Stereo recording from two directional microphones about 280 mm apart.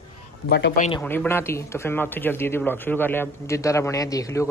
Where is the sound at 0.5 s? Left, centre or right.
Left.